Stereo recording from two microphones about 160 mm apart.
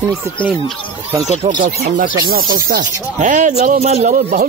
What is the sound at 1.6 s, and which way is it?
A man's voice, 65° right (ahead or behind).